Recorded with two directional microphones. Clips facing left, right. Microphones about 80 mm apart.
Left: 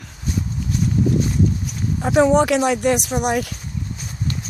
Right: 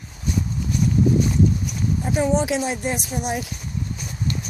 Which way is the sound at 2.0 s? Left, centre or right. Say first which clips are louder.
Left 7 dB; left.